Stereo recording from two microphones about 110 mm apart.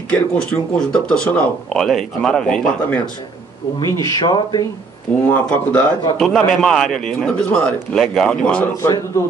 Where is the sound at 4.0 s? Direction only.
40° left (ahead or behind).